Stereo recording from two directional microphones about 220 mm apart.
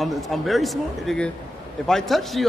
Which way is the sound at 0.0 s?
Centre (ahead or behind).